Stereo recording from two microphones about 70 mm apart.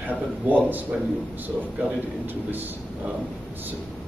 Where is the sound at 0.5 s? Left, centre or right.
Right.